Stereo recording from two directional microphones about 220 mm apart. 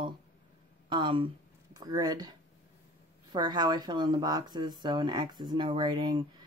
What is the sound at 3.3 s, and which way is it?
Speech, 20° right (ahead or behind).